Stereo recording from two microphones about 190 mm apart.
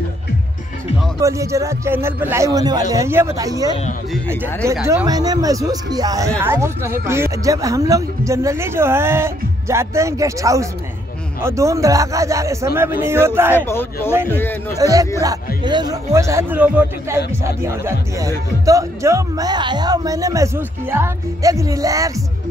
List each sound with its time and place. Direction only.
1.2 s speech: 15° right (ahead or behind)
4.8 s speech: 20° right (ahead or behind)
13.6 s speech: 10° left (ahead or behind)
14.8 s speech: 20° right (ahead or behind)